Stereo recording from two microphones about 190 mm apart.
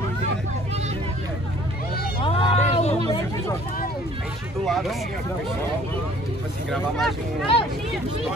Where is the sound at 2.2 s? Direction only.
30° left (ahead or behind).